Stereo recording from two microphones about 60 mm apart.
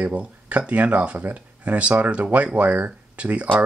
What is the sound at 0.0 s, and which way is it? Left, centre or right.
Speech, right.